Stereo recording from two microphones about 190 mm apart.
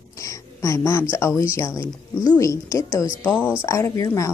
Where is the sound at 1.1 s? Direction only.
15° left (ahead or behind).